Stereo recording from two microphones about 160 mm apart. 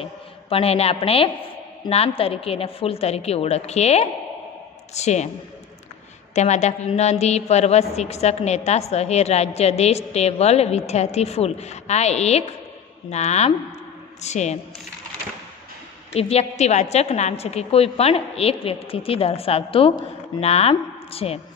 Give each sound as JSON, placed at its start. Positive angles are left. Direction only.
{"t": 0.0, "sound": "a woman's voice", "side_deg": 35}
{"t": 6.3, "sound": "a woman's voice", "side_deg": 45}
{"t": 16.1, "sound": "a woman's voice", "side_deg": 40}